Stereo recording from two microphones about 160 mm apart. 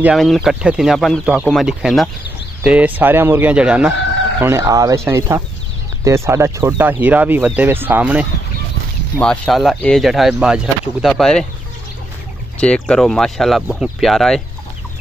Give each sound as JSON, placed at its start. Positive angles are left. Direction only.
{"t": 0.0, "sound": "speech", "side_deg": 0}
{"t": 4.4, "sound": "speech", "side_deg": -15}
{"t": 9.2, "sound": "speech", "side_deg": 5}
{"t": 12.5, "sound": "speech", "side_deg": 5}